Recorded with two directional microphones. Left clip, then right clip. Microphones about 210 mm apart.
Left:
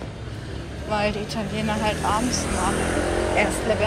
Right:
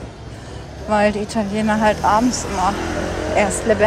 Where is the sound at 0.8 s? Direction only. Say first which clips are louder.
Right 7 dB; 30° right (ahead or behind).